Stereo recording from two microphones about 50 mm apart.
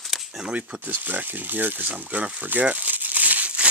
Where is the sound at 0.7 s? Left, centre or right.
Right.